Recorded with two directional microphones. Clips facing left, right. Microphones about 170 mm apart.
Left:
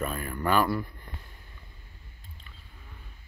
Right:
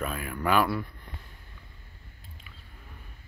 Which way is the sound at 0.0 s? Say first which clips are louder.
Even; centre (ahead or behind).